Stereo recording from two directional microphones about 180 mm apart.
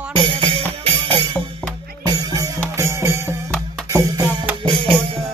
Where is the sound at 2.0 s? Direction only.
20° right (ahead or behind).